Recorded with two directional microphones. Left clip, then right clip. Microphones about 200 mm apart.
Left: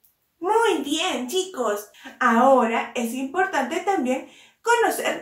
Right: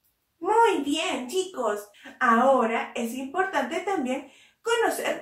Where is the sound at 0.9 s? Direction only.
20° left (ahead or behind).